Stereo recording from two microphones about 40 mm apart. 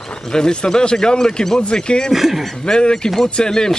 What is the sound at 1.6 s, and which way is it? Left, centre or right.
Speech, left.